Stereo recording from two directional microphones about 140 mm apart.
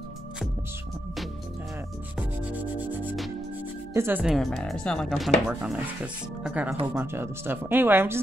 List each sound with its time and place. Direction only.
2.1 s rub: 10° right (ahead or behind)
3.9 s speech: 15° right (ahead or behind)
4.2 s speech: centre (ahead or behind)
7.0 s speech: 15° right (ahead or behind)